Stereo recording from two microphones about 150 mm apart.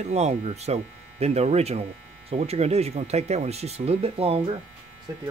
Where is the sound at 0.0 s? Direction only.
50° right (ahead or behind).